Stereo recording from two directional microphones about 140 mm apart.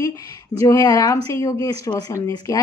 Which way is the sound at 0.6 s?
25° left (ahead or behind).